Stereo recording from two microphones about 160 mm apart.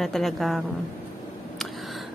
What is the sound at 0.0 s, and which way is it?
Speech, centre (ahead or behind).